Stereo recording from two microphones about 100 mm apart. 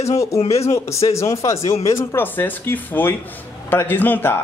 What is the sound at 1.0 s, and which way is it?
Speech, 30° left (ahead or behind).